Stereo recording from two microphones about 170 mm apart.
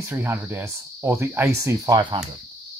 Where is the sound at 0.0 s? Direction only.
15° right (ahead or behind).